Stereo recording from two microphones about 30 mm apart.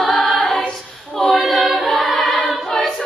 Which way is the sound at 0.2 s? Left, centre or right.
Centre.